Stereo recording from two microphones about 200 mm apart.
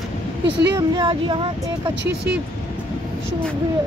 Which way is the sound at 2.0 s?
55° right (ahead or behind).